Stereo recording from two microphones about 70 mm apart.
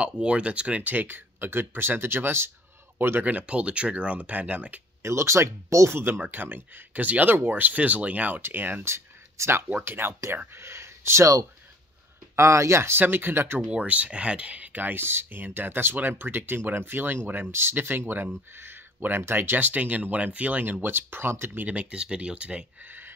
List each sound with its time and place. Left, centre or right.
0.0 s speech: centre
5.0 s speech: right
5.9 s speech: right
8.8 s a sound: right
9.7 s speech: right
12.4 s speech: right
13.6 s speech: centre; by 21.6 s right
21.6 s speech: centre
22.8 s a sound: right